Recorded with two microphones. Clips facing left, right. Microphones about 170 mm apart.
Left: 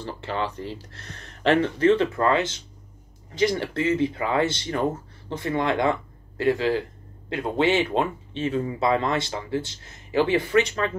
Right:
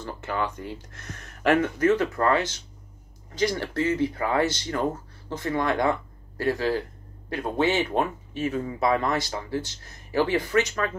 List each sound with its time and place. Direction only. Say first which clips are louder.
0.0 s speech: left 1 dB; 30° left (ahead or behind)